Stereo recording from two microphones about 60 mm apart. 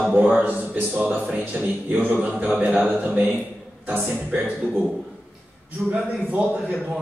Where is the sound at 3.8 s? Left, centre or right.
Right.